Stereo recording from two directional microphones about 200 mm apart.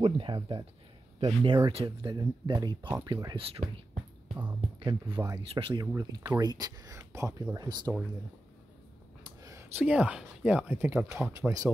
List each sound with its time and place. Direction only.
0.0 s speech: 25° right (ahead or behind)
5.2 s speech: 25° right (ahead or behind)
5.9 s speech: 15° right (ahead or behind)
9.2 s speech: 15° right (ahead or behind)
11.4 s speech: 15° right (ahead or behind)